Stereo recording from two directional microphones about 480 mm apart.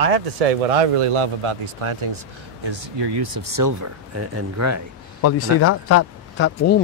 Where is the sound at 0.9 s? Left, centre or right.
Right.